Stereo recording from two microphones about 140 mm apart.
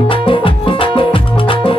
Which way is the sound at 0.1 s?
40° left (ahead or behind).